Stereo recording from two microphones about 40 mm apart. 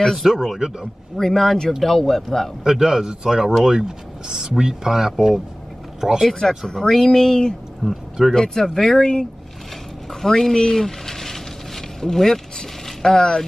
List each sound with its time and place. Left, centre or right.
0.2 s speech: centre
0.6 s speech: centre
1.1 s speech: centre
2.6 s speech: centre
6.7 s speech: centre
7.8 s speech: centre
8.7 s speech: centre
10.2 s a sound: centre